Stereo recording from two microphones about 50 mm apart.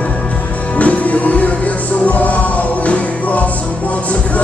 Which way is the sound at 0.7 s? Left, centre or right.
Left.